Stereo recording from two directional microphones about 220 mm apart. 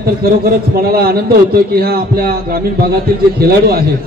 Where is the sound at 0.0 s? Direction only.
45° right (ahead or behind).